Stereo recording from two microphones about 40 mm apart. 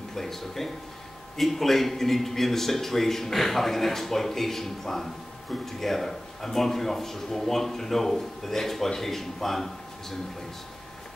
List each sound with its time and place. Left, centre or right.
0.1 s speech: centre